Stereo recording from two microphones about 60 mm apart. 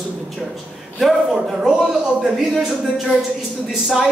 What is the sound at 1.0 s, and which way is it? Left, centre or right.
A woman's voice, centre.